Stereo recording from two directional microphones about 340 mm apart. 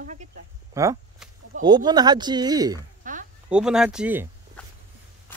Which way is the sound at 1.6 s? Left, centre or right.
Centre.